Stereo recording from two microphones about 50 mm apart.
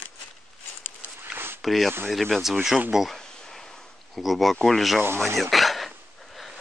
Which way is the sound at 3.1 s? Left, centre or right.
Centre.